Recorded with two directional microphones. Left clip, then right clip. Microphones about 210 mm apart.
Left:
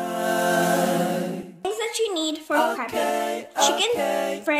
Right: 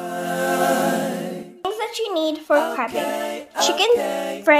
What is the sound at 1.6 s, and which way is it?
A woman's voice, 25° right (ahead or behind).